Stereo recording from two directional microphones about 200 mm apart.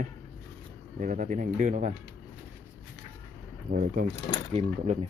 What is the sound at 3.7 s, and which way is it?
Speech, 45° right (ahead or behind).